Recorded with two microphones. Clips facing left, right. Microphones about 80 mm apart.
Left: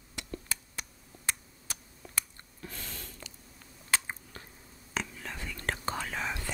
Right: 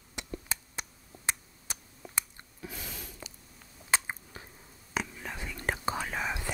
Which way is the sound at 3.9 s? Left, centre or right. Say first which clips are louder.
Right 2 dB; centre.